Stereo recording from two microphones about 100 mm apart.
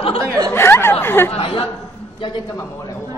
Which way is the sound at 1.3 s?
75° left (ahead or behind).